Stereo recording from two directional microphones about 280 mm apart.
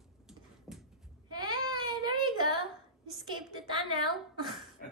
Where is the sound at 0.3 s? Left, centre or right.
Centre.